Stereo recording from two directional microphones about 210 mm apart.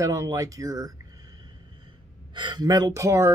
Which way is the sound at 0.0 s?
15° right (ahead or behind).